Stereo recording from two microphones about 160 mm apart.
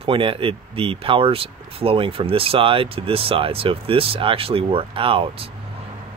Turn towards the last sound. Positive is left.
turn(degrees=-35)  # may be behind; listen again after turning